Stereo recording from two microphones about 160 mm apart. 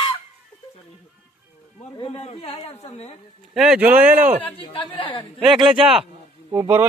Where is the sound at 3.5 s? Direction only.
5° right (ahead or behind).